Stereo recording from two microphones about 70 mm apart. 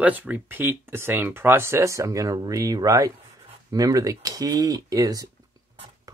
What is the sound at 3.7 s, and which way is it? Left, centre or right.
Speech, right.